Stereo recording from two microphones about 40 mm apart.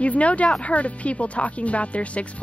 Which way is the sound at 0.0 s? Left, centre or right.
Left.